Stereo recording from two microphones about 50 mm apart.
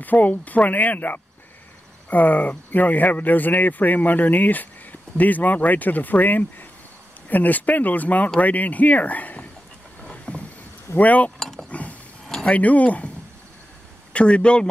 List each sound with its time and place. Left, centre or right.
0.0 s speech: left
10.3 s a sound: left
11.0 s speech: left
11.3 s mechanisms: centre
11.7 s mechanisms: left
12.4 s speech: left
14.1 s speech: left